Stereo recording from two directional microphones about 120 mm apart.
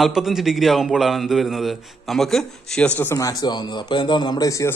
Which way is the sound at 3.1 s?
30° left (ahead or behind).